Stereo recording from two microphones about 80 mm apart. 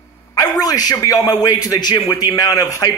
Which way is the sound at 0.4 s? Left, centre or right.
Left.